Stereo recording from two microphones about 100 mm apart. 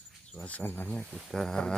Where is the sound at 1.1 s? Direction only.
5° right (ahead or behind).